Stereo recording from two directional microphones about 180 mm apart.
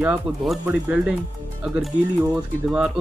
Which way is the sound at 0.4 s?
5° right (ahead or behind).